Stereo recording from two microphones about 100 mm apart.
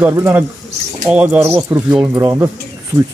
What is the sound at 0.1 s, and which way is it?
A man's voice, 20° right (ahead or behind).